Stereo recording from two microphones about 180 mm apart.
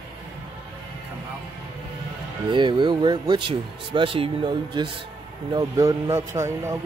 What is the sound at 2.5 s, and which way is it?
Speech, 25° right (ahead or behind).